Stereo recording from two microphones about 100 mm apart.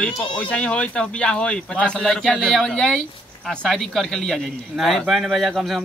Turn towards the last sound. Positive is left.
turn(degrees=0)  # may be behind; listen again after turning